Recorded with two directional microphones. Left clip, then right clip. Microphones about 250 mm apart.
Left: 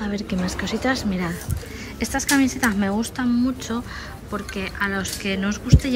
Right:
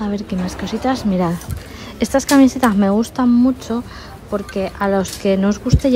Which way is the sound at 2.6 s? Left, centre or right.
Left.